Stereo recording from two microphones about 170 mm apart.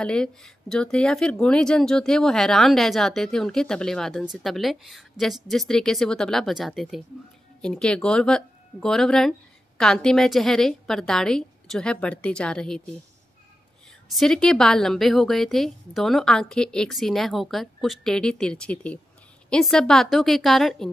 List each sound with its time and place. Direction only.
0.0 s speech: 5° left (ahead or behind)
14.1 s speech: 5° left (ahead or behind)